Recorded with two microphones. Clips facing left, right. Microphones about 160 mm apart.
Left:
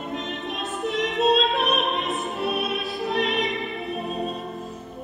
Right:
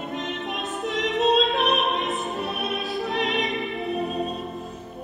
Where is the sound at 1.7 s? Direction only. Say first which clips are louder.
Right 1 dB; centre (ahead or behind).